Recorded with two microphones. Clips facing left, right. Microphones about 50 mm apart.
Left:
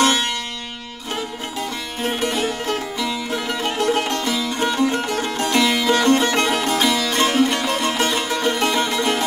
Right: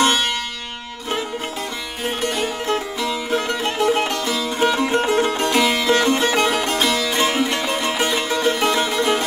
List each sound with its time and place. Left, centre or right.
2.0 s music: centre
2.6 s music: right
3.1 s music: centre
5.0 s music: right
5.4 s music: centre